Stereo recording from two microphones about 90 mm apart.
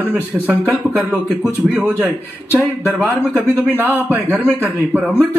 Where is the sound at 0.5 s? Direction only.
20° right (ahead or behind).